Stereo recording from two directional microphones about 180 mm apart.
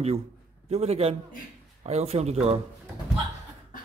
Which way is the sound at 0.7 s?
35° right (ahead or behind).